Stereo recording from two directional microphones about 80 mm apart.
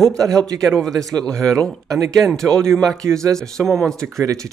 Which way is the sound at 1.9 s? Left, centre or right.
Right.